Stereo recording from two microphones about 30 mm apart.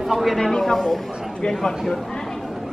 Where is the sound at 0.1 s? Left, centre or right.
Centre.